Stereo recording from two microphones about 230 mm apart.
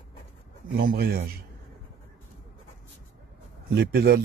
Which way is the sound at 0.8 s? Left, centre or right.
Right.